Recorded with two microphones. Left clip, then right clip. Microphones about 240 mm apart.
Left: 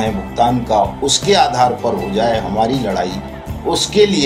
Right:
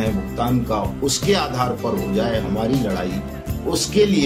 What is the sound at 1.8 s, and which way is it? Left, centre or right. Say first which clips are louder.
Speech: left 5 dB; centre.